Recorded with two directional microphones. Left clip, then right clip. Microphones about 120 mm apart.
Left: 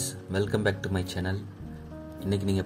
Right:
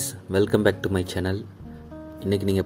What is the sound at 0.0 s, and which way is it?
Speech, 60° right (ahead or behind).